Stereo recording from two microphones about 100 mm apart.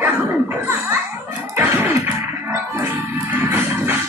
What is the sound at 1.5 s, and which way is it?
Music, 20° right (ahead or behind).